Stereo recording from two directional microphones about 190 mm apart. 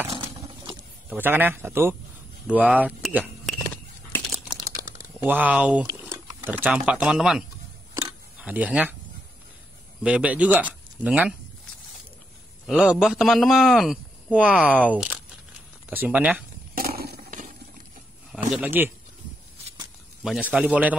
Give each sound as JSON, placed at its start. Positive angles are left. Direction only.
{"t": 1.1, "sound": "speech", "side_deg": -10}
{"t": 3.4, "sound": "a sound", "side_deg": 5}
{"t": 4.6, "sound": "typing", "side_deg": -20}
{"t": 6.1, "sound": "speech", "side_deg": -10}
{"t": 7.9, "sound": "a sound", "side_deg": -10}
{"t": 10.0, "sound": "speech", "side_deg": -5}
{"t": 12.6, "sound": "a man's voice", "side_deg": 0}
{"t": 16.7, "sound": "a sound", "side_deg": -50}
{"t": 18.3, "sound": "speech", "side_deg": -5}
{"t": 20.2, "sound": "speech", "side_deg": -5}